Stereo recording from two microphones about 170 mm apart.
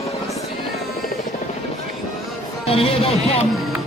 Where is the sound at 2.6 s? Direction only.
35° left (ahead or behind).